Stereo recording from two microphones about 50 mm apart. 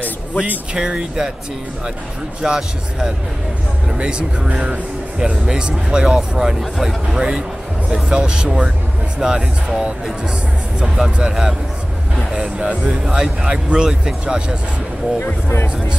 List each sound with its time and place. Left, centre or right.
0.7 s speech: centre
2.4 s speech: centre